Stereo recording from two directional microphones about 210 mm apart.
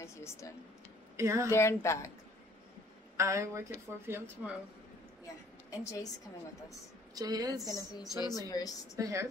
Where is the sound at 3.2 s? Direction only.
15° right (ahead or behind).